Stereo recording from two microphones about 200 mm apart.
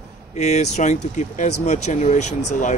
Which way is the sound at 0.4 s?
35° left (ahead or behind).